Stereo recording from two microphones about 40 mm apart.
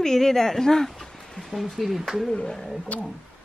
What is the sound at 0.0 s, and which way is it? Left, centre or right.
Speech, centre.